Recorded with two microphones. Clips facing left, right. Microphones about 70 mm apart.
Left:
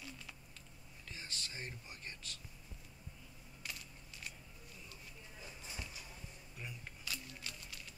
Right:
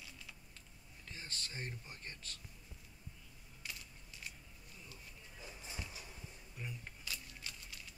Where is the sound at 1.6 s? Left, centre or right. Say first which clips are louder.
Right 1 dB; right.